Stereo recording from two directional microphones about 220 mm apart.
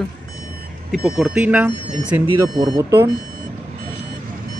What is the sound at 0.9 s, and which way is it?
Speech, centre (ahead or behind).